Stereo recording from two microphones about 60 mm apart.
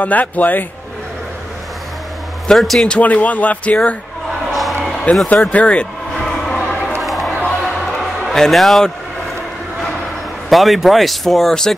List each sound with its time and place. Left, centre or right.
0.0 s speech: left
2.5 s speech: centre
2.9 s speech: left
5.1 s speech: left
6.1 s a sound: centre
7.6 s music: centre
8.3 s speech: centre
10.5 s speech: centre